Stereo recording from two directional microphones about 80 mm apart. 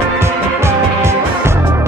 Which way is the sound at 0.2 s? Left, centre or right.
Right.